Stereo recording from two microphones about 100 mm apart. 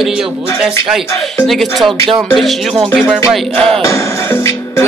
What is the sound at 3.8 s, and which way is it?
Music, 30° left (ahead or behind).